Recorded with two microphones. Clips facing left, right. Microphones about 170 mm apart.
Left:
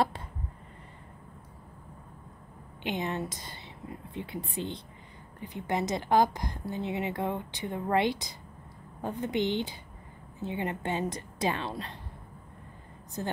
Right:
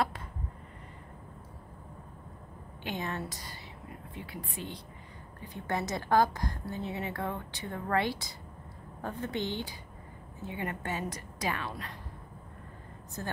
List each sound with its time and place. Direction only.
2.8 s a woman's voice: 20° left (ahead or behind)
13.2 s a woman's voice: 20° left (ahead or behind)